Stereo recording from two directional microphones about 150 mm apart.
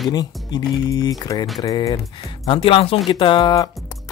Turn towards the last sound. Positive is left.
turn(degrees=30)  # may be behind; listen again after turning